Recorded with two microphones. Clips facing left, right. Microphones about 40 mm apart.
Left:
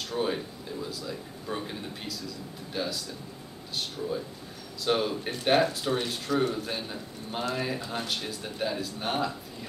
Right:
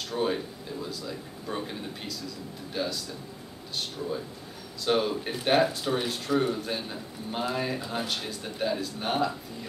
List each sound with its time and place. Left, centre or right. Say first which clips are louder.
0.0 s speech: right 1 dB; centre